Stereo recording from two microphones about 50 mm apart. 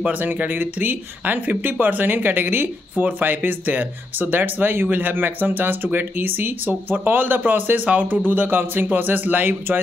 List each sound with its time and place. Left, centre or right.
0.1 s speech: right